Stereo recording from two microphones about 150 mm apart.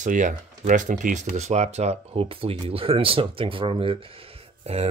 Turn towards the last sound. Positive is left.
turn(degrees=-45)  # may be behind; listen again after turning